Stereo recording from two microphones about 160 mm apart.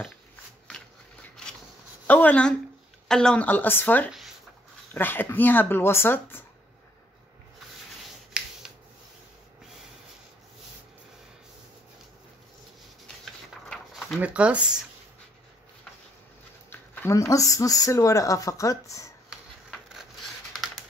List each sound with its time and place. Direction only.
2.0 s speech: 10° left (ahead or behind)
8.3 s finger snapping: 5° right (ahead or behind)
13.0 s a sound: centre (ahead or behind)
14.1 s speech: 5° right (ahead or behind)
16.7 s speech: 15° left (ahead or behind)
20.5 s computer keyboard: centre (ahead or behind)